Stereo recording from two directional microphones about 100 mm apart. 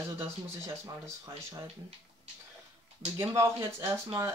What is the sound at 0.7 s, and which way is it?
Speech, 30° right (ahead or behind).